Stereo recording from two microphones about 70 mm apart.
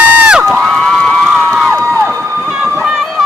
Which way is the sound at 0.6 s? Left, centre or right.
Centre.